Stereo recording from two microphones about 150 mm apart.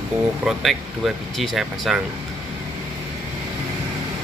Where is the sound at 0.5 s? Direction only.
Centre (ahead or behind).